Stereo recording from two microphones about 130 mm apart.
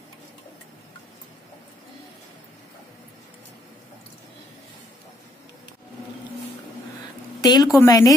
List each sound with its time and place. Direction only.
7.4 s a woman's voice: 30° left (ahead or behind)